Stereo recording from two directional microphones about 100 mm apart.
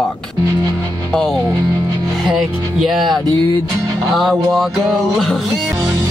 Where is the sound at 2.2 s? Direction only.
5° right (ahead or behind).